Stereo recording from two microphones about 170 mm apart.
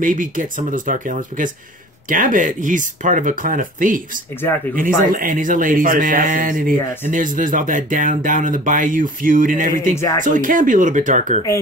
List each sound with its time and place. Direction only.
0.0 s speech: 50° right (ahead or behind)